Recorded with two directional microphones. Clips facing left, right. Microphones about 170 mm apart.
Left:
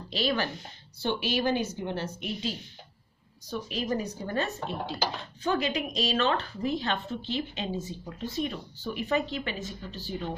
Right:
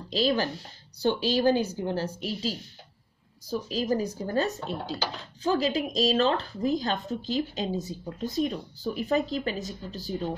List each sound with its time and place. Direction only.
0.1 s speech: 35° right (ahead or behind)